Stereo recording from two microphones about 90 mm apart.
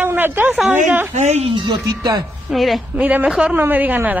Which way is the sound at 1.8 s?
50° right (ahead or behind).